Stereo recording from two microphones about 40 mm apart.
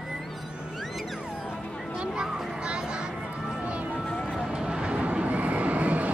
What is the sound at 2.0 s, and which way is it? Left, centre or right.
Children playing, right.